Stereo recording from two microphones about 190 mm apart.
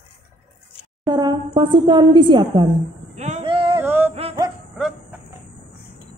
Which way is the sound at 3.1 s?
35° right (ahead or behind).